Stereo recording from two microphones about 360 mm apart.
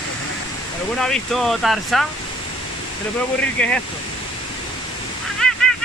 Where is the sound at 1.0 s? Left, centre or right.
Centre.